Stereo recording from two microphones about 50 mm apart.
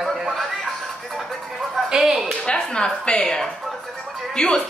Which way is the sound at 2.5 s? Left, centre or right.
Centre.